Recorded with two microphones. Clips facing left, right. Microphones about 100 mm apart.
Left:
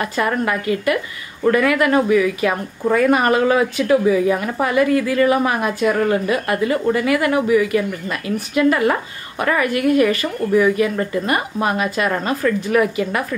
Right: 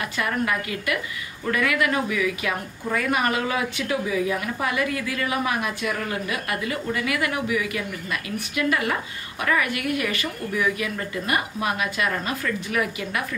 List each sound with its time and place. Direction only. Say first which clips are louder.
0.0 s a woman's voice: left 6 dB; 40° left (ahead or behind)